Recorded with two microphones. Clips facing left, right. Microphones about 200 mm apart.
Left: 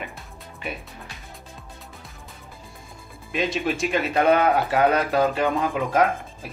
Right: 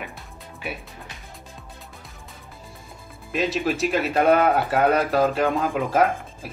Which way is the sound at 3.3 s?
Centre (ahead or behind).